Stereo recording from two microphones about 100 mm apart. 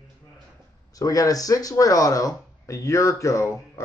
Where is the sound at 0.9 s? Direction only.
35° left (ahead or behind).